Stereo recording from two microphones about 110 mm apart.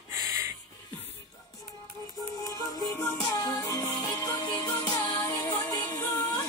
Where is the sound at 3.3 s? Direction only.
30° left (ahead or behind).